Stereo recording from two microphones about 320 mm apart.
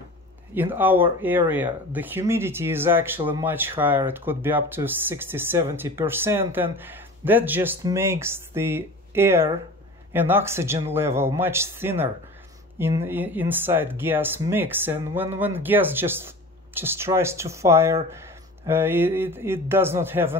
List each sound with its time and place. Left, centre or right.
0.6 s speech: centre